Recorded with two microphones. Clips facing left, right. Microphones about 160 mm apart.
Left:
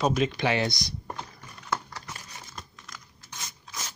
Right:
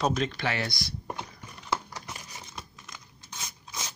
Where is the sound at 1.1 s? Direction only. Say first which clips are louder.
Right 1 dB; 15° right (ahead or behind).